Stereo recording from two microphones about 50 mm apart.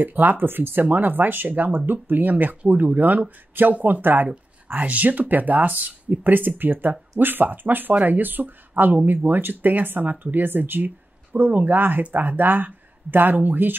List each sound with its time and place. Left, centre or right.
0.0 s speech: right